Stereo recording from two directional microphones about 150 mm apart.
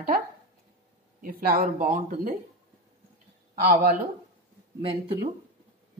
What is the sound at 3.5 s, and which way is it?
Speech, 80° right.